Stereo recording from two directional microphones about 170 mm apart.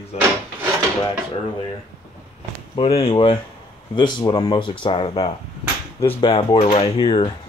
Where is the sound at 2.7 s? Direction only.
35° left (ahead or behind).